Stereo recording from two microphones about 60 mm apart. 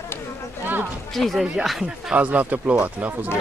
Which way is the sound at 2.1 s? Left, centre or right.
Right.